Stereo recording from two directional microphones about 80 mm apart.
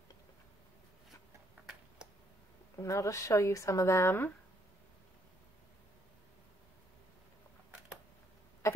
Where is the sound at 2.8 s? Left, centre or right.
Left.